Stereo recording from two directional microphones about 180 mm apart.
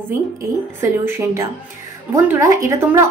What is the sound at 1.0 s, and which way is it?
Speech, 15° right (ahead or behind).